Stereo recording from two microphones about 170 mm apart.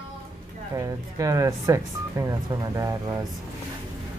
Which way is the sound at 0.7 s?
20° right (ahead or behind).